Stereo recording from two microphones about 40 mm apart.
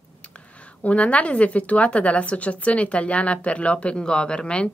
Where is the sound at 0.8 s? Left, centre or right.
Left.